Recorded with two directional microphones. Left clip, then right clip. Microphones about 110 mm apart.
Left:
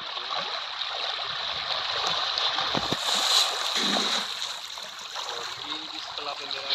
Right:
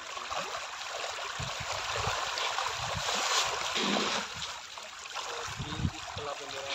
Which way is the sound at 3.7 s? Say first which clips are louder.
Left 5 dB; 90° right.